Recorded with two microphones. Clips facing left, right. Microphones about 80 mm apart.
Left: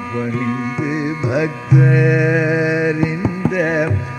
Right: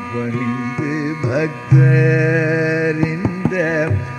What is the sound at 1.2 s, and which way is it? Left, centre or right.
Music, centre.